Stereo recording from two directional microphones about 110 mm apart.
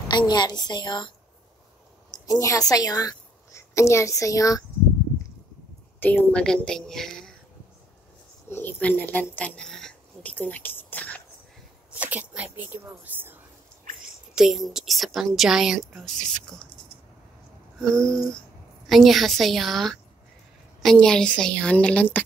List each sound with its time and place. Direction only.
0.1 s a woman's voice: 40° left (ahead or behind)
5.9 s a woman's voice: 15° left (ahead or behind)
8.5 s speech: 20° left (ahead or behind)
10.3 s speech: 15° left (ahead or behind)
11.9 s speech: 15° right (ahead or behind)
14.3 s a woman's voice: 5° right (ahead or behind)
17.7 s a woman's voice: 5° left (ahead or behind)